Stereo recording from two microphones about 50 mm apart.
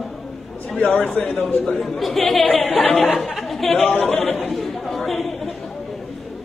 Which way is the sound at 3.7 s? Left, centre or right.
Left.